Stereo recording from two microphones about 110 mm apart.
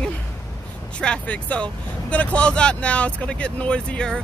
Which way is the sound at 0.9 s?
10° left (ahead or behind).